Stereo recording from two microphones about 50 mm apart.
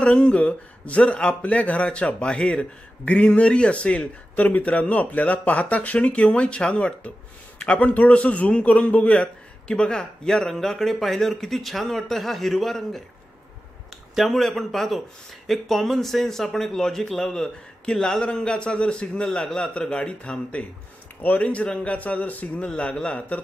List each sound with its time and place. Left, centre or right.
0.0 s a man's voice: left; by 13.0 s centre
14.1 s a man's voice: centre; by 22.7 s left
22.8 s speech: left